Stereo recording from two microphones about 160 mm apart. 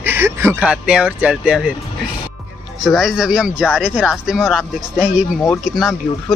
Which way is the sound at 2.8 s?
Centre (ahead or behind).